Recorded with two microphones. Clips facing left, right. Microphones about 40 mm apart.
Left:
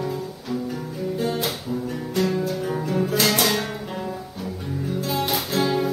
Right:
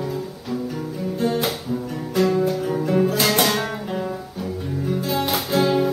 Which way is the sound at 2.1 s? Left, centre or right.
Centre.